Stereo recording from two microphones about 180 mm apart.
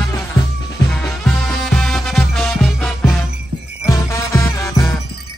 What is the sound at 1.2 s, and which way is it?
Music, 5° left (ahead or behind).